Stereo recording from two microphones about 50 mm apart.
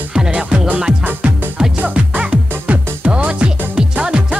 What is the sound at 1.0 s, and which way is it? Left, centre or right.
Music, right.